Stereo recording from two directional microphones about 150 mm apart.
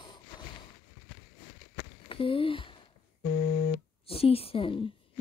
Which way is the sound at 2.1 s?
35° left (ahead or behind).